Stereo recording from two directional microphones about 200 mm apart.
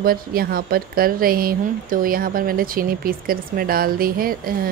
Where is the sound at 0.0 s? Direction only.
50° right (ahead or behind).